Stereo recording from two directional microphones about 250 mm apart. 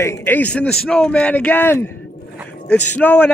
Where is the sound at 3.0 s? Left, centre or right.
Centre.